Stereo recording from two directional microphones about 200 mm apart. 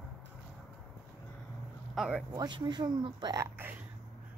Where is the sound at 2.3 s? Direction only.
20° right (ahead or behind).